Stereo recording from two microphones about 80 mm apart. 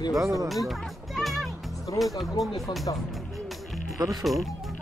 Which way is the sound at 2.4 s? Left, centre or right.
Centre.